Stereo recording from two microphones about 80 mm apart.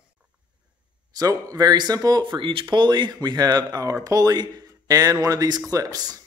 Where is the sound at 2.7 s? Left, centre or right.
Right.